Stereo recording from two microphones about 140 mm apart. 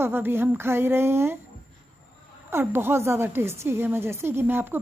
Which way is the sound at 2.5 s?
15° right (ahead or behind).